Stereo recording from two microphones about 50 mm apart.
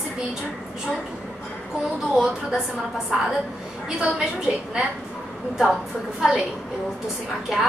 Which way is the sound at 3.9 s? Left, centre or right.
Centre.